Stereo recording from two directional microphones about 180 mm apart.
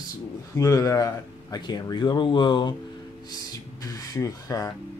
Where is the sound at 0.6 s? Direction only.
15° left (ahead or behind).